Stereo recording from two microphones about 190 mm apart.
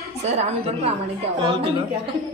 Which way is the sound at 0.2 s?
35° right (ahead or behind).